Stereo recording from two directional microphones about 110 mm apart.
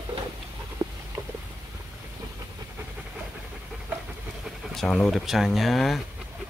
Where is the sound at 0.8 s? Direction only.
50° right (ahead or behind).